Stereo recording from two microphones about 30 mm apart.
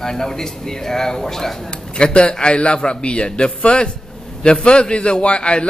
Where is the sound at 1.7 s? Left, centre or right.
Left.